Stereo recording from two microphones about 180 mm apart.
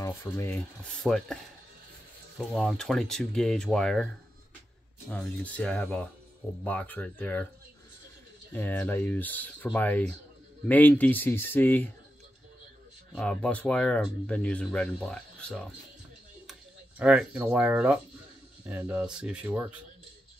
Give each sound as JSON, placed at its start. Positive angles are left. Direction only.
{"t": 0.0, "sound": "speech", "side_deg": 15}
{"t": 1.0, "sound": "speech", "side_deg": 5}
{"t": 5.1, "sound": "speech", "side_deg": 10}
{"t": 8.5, "sound": "speech", "side_deg": 10}
{"t": 13.1, "sound": "speech", "side_deg": 5}
{"t": 17.0, "sound": "speech", "side_deg": -5}